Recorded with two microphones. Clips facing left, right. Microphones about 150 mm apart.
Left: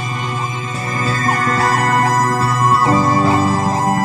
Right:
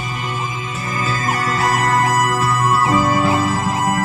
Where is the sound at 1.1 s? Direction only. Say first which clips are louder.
Left 3 dB; 30° left (ahead or behind).